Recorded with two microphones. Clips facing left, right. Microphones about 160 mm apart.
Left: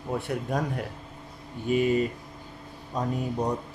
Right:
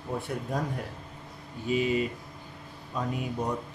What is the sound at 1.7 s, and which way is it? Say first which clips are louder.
A man's voice: left 3 dB; 50° left (ahead or behind).